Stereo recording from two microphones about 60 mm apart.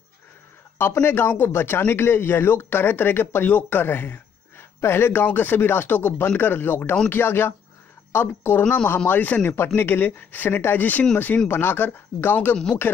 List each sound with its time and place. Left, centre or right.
1.0 s speech: left
8.6 s speech: left
9.8 s speech: left